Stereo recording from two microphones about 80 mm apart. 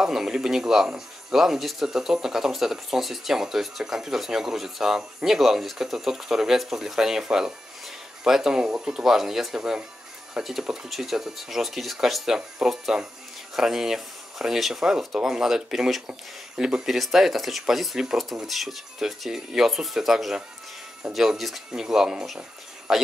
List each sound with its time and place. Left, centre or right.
0.0 s speech: centre